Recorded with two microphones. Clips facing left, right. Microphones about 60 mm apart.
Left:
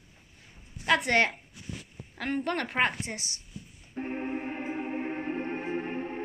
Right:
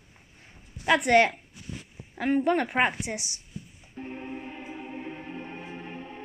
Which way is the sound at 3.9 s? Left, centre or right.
Left.